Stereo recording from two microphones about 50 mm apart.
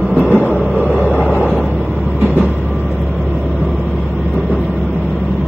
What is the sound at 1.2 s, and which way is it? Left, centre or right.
Vehicle, centre.